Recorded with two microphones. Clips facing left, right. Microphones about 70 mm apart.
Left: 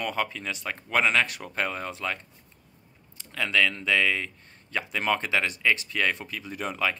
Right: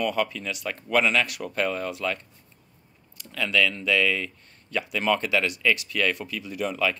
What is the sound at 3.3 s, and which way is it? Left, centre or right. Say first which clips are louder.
Speech: right 1 dB; left.